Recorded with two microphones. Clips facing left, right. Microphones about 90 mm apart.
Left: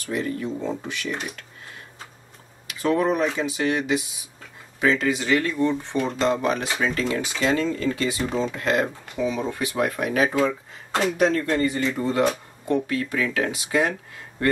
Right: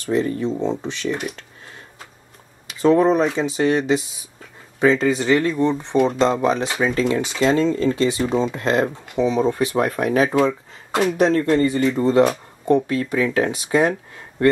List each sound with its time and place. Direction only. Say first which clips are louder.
0.0 s speech: right 6 dB; 25° right (ahead or behind)
2.8 s speech: right 6 dB; 25° right (ahead or behind)